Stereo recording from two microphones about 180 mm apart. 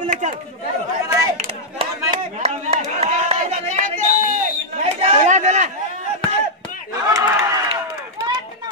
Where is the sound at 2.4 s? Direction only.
35° right (ahead or behind).